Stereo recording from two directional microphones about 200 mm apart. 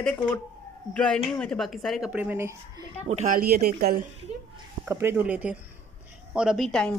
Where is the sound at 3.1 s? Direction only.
40° right (ahead or behind).